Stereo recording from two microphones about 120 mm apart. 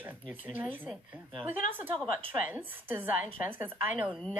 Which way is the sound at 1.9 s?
50° right (ahead or behind).